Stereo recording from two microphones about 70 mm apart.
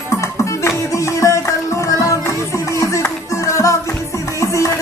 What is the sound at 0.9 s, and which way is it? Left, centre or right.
Music, left.